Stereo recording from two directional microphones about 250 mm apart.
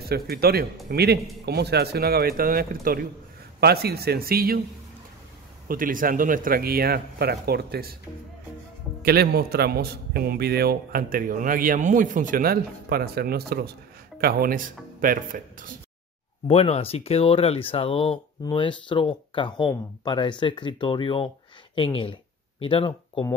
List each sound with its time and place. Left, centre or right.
0.1 s a man's voice: right
5.7 s a man's voice: right
9.0 s a man's voice: right
16.4 s speech: left